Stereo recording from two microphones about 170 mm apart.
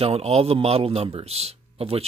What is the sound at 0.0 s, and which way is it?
A man's voice, 35° right (ahead or behind).